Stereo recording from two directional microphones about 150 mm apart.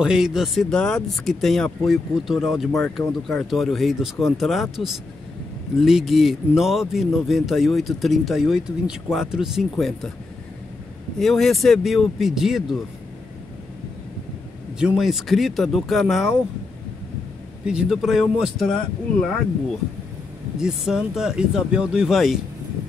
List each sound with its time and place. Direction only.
0.0 s speech: 5° right (ahead or behind)
11.1 s speech: centre (ahead or behind)
14.8 s speech: 5° right (ahead or behind)
17.6 s speech: 5° right (ahead or behind)
20.5 s speech: 5° right (ahead or behind)